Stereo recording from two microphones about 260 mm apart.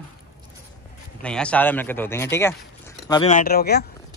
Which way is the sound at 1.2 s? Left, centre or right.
Centre.